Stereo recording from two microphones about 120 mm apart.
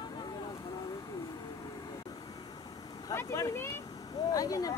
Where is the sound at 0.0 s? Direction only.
35° left (ahead or behind).